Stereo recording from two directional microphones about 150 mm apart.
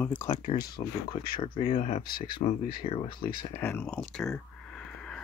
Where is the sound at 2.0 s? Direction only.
80° left.